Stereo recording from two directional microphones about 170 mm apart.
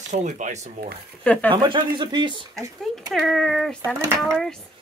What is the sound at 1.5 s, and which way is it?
Speech, 30° right (ahead or behind).